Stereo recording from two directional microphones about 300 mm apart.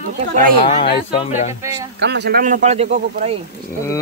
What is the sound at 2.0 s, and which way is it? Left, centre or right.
Speech, right.